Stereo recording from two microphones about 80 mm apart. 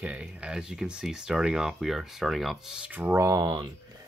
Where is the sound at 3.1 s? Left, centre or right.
Right.